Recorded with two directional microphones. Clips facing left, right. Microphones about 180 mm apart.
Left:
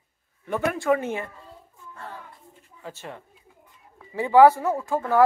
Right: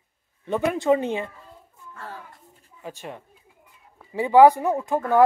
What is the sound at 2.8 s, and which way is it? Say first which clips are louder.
Speech: right 2 dB; 15° right (ahead or behind).